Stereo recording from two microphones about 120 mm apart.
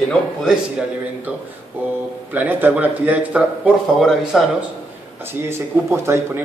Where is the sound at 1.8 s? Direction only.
15° right (ahead or behind).